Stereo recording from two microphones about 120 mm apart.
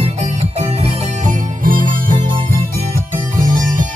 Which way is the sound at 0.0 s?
65° right (ahead or behind).